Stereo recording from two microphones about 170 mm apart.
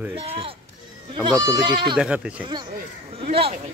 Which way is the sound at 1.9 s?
5° right (ahead or behind).